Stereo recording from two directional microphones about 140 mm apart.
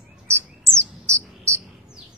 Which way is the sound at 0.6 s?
20° right (ahead or behind).